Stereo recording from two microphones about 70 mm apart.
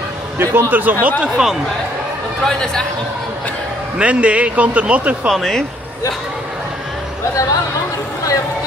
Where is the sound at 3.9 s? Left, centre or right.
Centre.